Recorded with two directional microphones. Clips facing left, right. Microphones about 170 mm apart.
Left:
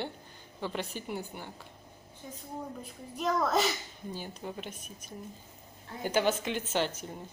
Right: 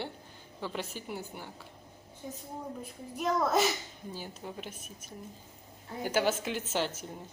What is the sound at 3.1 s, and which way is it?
A child's voice, 5° right (ahead or behind).